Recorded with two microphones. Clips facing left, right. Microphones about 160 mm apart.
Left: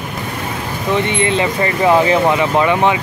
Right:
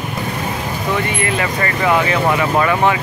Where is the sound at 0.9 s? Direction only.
25° left (ahead or behind).